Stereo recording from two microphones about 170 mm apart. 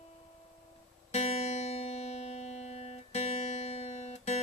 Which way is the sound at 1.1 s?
40° left (ahead or behind).